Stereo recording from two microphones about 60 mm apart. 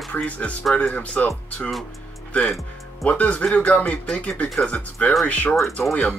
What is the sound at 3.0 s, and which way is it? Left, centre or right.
Speech, left.